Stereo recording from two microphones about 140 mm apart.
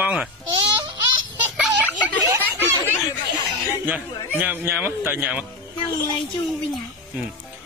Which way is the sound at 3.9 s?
10° right (ahead or behind).